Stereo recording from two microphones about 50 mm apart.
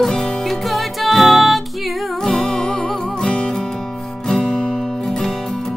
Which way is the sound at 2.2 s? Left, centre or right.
Centre.